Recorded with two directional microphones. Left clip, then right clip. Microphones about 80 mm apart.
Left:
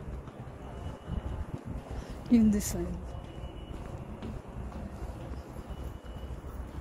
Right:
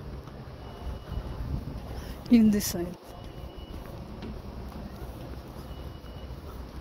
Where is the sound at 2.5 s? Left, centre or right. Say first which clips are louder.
Right 4 dB; right.